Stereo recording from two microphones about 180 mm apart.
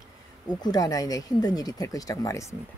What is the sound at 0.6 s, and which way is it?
Speech, 20° left (ahead or behind).